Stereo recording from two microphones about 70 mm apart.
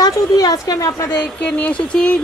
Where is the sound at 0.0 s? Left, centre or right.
Left.